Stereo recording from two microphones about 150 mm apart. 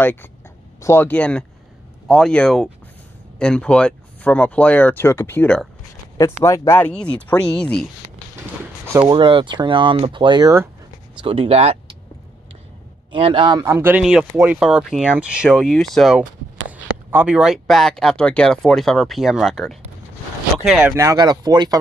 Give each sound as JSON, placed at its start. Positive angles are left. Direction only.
{"t": 0.0, "sound": "speech", "side_deg": 15}
{"t": 9.0, "sound": "speech", "side_deg": -35}
{"t": 13.1, "sound": "speech", "side_deg": -35}
{"t": 13.7, "sound": "speech", "side_deg": -15}
{"t": 20.9, "sound": "speech", "side_deg": -20}